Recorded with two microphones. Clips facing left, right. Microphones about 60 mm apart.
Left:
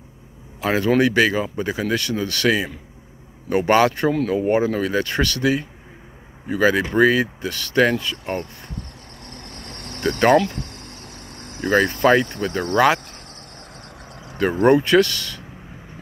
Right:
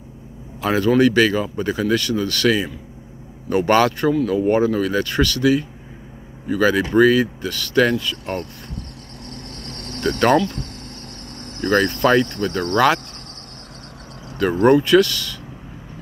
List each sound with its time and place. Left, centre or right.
0.6 s speech: left
9.6 s vehicle: centre
11.0 s speech: centre
14.2 s a sound: left
14.6 s speech: left